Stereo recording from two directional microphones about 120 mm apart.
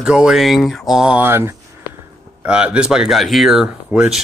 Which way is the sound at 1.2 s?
20° right (ahead or behind).